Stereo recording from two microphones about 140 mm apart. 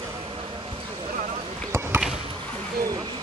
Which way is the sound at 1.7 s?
15° right (ahead or behind).